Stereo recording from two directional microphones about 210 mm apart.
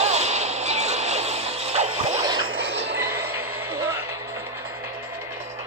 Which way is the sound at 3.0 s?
10° right (ahead or behind).